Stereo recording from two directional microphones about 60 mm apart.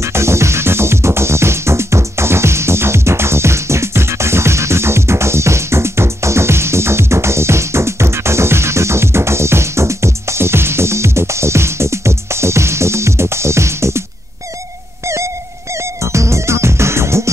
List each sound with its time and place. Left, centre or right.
0.0 s music: right
15.0 s music: right